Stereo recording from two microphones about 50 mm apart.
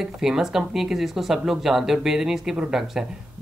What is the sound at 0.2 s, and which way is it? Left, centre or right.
Speech, centre.